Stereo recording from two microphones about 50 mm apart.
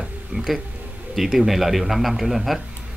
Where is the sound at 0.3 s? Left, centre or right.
Centre.